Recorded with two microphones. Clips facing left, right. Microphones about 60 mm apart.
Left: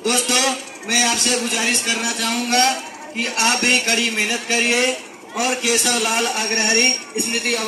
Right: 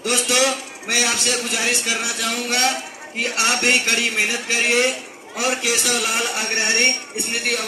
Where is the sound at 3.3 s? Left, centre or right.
Centre.